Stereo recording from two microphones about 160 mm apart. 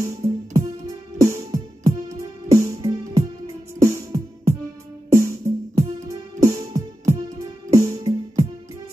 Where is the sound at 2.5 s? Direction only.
20° right (ahead or behind).